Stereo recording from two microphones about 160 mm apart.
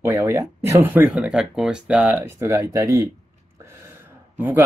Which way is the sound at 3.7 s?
15° right (ahead or behind).